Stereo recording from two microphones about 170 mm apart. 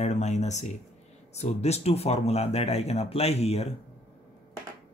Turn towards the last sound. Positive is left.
turn(degrees=35)  # may be behind; listen again after turning